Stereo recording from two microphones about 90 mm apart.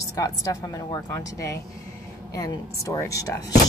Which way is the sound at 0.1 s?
40° left (ahead or behind).